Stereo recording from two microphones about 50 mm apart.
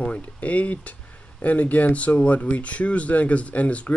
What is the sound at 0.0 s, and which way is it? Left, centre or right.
Speech, left.